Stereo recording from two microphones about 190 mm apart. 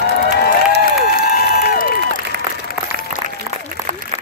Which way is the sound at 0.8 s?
50° left (ahead or behind).